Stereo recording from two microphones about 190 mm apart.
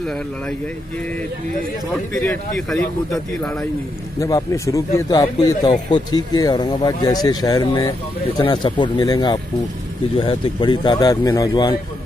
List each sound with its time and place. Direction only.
2.1 s a man's voice: centre (ahead or behind)
4.2 s speech: 15° left (ahead or behind)